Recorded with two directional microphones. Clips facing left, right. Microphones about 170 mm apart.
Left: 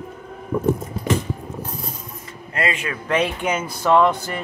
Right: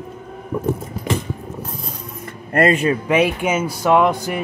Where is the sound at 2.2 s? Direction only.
55° right (ahead or behind).